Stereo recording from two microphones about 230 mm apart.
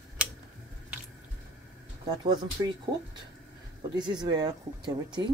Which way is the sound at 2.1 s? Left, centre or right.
Centre.